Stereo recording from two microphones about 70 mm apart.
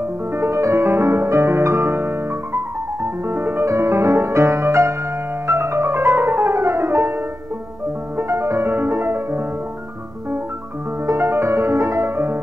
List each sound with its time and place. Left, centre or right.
0.3 s music: right
3.6 s music: right
5.5 s piano: right
8.2 s music: right
11.1 s music: right